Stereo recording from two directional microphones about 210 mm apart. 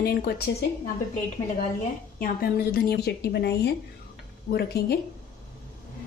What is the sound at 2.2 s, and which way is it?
A woman's voice, 45° left (ahead or behind).